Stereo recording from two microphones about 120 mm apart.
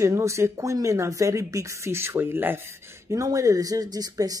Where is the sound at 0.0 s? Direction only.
25° right (ahead or behind).